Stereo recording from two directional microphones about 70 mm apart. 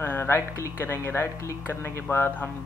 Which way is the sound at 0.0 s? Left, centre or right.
Left.